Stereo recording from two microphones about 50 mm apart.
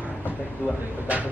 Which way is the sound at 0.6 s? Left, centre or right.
Left.